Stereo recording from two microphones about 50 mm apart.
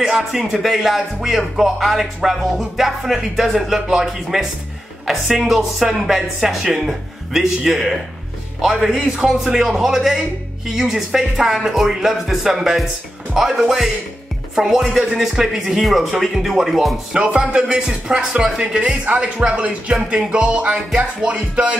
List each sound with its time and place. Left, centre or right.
0.0 s speech: centre
9.0 s speech: centre
17.1 s speech: right
19.0 s music: right